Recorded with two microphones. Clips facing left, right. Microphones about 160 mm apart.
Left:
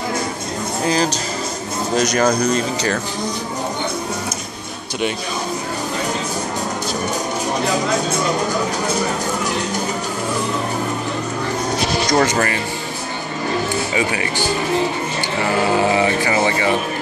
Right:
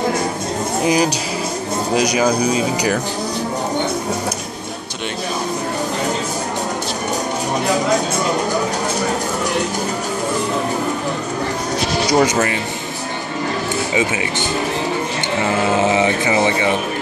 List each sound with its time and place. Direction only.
0.8 s speech: 15° right (ahead or behind)
12.1 s speech: 10° right (ahead or behind)
13.9 s speech: 20° right (ahead or behind)
15.8 s speech: 20° right (ahead or behind)